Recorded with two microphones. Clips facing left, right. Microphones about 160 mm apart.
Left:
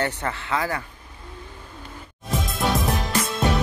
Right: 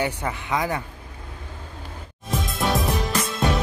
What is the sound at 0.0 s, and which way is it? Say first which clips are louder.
Speech: even; 15° right (ahead or behind).